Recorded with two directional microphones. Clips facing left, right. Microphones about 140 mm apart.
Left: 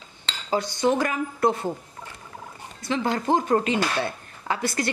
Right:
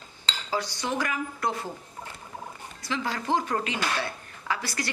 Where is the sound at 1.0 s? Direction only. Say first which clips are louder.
Left 7 dB; 25° left (ahead or behind).